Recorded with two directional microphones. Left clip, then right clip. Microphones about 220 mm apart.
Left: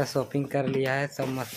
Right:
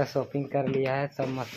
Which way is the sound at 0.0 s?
20° left (ahead or behind).